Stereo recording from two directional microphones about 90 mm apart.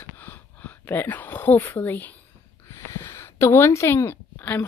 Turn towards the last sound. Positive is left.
turn(degrees=20)  # may be behind; listen again after turning